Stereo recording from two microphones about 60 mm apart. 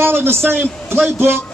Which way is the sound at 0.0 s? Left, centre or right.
Right.